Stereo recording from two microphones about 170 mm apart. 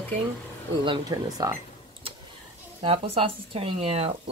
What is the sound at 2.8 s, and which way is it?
Speech, 35° right (ahead or behind).